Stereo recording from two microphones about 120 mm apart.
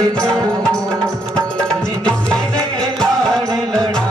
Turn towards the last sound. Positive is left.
turn(degrees=5)  # may be behind; listen again after turning